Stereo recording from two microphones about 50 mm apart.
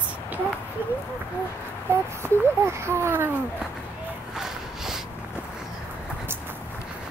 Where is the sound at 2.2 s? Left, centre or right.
Right.